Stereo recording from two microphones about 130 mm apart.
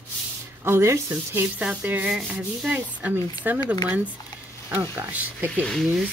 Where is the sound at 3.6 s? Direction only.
30° left (ahead or behind).